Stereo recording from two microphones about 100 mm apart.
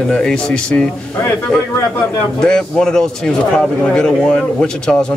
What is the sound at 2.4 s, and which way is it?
A man's voice, 5° left (ahead or behind).